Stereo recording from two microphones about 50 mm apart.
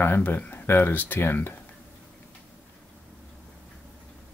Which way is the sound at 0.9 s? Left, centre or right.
Left.